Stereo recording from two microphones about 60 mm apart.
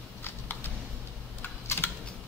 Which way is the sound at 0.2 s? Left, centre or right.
Left.